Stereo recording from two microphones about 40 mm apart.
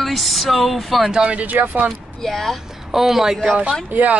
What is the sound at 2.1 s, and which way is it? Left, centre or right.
Speech, centre.